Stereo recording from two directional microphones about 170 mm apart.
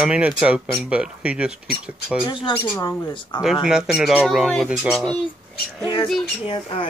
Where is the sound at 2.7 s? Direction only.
25° left (ahead or behind).